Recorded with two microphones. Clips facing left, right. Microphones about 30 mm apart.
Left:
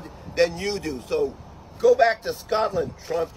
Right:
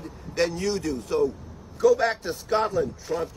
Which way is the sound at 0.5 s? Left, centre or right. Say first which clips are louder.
Right 1 dB; left.